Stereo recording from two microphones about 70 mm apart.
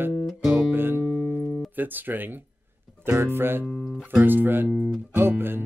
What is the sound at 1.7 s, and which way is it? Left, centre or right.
Speech, right.